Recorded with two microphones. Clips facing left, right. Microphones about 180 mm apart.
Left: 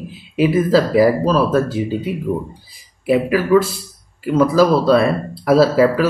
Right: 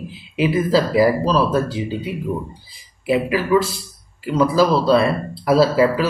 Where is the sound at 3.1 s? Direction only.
40° left (ahead or behind).